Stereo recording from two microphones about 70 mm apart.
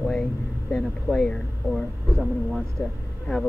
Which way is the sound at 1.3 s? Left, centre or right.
Centre.